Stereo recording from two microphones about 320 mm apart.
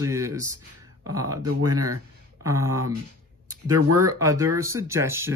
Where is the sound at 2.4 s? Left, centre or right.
Centre.